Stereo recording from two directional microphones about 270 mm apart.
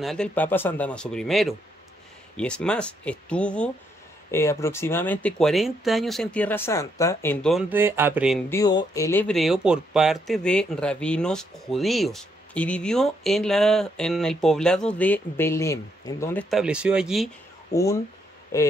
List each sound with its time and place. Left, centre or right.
0.0 s speech: centre
8.5 s speech: centre
16.4 s speech: centre
18.5 s speech: centre